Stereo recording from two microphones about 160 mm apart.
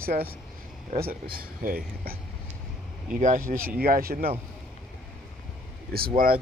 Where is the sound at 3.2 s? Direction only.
55° right (ahead or behind).